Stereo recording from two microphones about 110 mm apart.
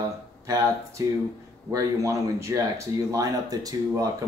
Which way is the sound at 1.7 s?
30° right (ahead or behind).